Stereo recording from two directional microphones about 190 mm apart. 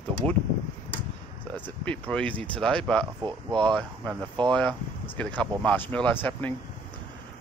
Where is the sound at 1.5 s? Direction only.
10° left (ahead or behind).